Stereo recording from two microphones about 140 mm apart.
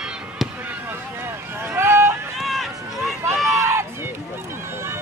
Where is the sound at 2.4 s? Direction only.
Centre (ahead or behind).